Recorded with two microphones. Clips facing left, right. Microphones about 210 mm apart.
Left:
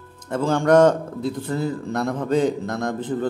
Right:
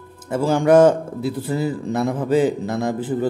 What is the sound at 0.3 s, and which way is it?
A man's voice, 10° right (ahead or behind).